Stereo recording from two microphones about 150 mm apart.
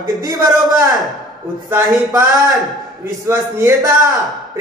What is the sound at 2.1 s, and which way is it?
A man's voice, 25° right (ahead or behind).